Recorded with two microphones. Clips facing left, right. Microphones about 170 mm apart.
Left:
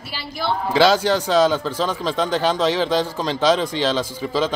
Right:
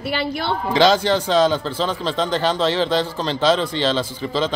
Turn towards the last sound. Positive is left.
turn(degrees=10)  # may be behind; listen again after turning